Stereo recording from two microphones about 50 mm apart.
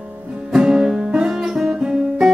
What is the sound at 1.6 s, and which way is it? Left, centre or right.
Guitar, centre.